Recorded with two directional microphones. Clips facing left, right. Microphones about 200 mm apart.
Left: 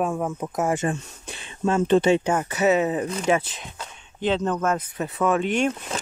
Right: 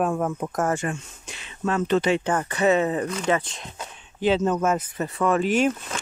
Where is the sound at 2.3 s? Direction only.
10° left (ahead or behind).